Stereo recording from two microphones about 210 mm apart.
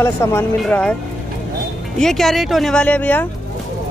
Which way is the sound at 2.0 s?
Centre (ahead or behind).